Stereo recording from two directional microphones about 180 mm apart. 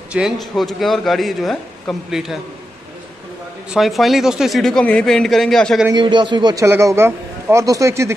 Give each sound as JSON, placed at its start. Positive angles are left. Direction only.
{"t": 0.1, "sound": "speech", "side_deg": 0}
{"t": 3.7, "sound": "speech", "side_deg": 0}
{"t": 5.9, "sound": "a man's voice", "side_deg": -25}